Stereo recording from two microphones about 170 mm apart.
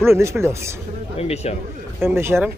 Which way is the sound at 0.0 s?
15° right (ahead or behind).